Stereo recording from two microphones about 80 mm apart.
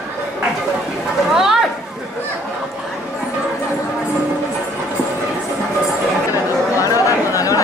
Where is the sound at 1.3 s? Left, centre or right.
Centre.